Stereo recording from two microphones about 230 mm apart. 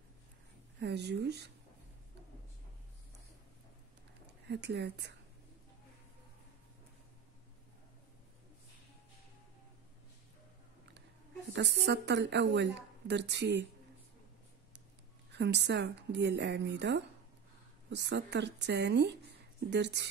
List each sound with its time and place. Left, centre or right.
0.7 s a woman's voice: right
4.5 s a woman's voice: right
11.5 s a woman's voice: right
15.3 s a woman's voice: right